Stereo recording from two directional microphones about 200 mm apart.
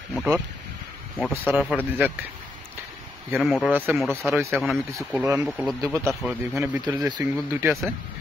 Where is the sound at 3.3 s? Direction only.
5° left (ahead or behind).